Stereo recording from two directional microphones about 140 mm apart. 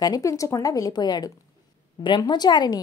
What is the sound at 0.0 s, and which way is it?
A woman's voice, 25° left (ahead or behind).